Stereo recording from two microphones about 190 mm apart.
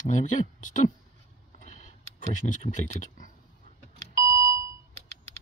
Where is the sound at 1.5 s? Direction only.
40° left (ahead or behind).